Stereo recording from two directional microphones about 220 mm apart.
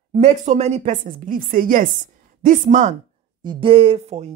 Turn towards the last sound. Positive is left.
turn(degrees=-25)  # may be behind; listen again after turning